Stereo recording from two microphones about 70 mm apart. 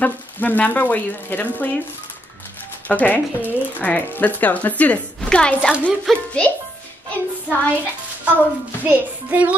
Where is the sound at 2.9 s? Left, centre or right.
Left; by 6.2 s centre.